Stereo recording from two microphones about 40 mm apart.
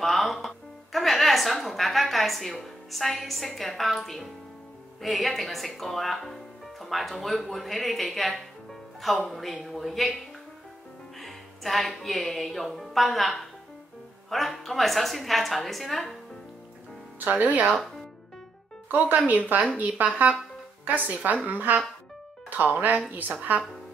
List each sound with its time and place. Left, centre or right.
0.0 s music: centre
0.9 s a woman's voice: centre
17.2 s speech: right
18.9 s speech: right
21.1 s speech: right